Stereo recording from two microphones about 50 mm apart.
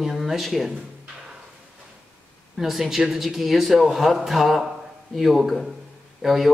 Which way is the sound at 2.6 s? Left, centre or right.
Centre.